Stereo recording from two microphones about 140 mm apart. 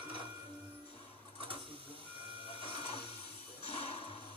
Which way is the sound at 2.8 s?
40° left (ahead or behind).